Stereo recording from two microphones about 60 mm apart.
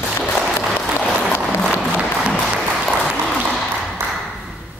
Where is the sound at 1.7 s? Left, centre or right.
Centre.